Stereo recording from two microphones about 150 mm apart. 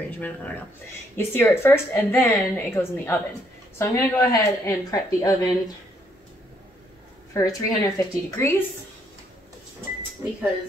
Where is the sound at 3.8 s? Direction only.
20° left (ahead or behind).